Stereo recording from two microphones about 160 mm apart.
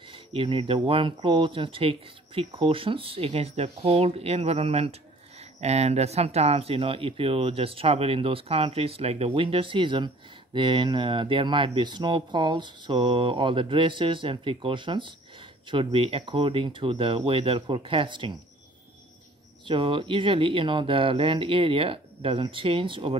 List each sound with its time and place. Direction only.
0.1 s speech: 35° right (ahead or behind)
19.6 s speech: 30° right (ahead or behind)